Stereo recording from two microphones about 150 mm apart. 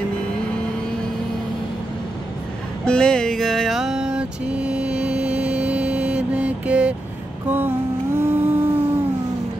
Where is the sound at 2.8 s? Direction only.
5° left (ahead or behind).